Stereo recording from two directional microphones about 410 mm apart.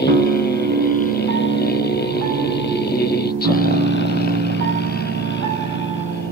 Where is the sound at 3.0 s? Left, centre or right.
Left.